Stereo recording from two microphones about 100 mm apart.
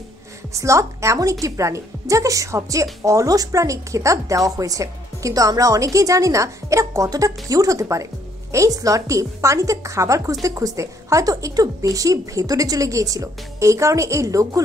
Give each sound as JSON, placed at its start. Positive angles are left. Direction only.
{"t": 0.6, "sound": "a woman's voice", "side_deg": -30}